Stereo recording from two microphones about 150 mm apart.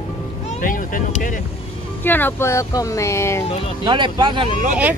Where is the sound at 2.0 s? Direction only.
15° left (ahead or behind).